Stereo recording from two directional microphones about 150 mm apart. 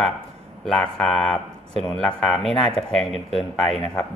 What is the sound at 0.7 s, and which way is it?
A man's voice, 5° left (ahead or behind).